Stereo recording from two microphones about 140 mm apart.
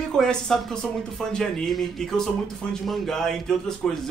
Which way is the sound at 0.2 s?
5° left (ahead or behind).